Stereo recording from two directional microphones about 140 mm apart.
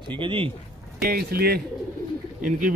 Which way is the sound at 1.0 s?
90° right.